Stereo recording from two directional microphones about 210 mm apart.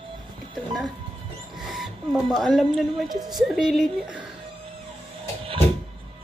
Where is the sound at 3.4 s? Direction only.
Centre (ahead or behind).